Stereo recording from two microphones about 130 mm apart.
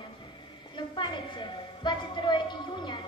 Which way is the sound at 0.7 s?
35° left (ahead or behind).